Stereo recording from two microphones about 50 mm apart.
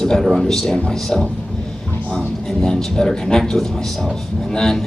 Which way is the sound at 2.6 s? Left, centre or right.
Centre.